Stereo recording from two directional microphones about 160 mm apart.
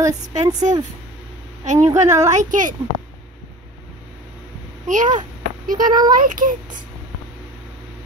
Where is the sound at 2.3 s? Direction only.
55° right (ahead or behind).